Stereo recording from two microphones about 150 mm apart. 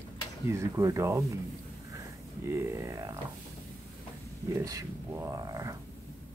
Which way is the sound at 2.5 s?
20° right (ahead or behind).